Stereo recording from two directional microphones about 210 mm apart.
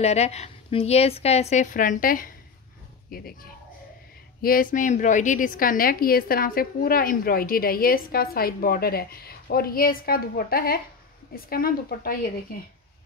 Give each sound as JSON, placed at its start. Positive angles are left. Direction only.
{"t": 0.0, "sound": "a woman's voice", "side_deg": 30}
{"t": 4.4, "sound": "a woman's voice", "side_deg": 45}